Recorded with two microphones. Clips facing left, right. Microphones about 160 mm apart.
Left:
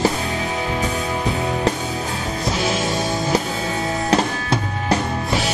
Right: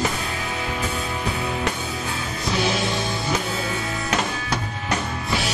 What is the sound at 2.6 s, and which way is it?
Music, 45° left (ahead or behind).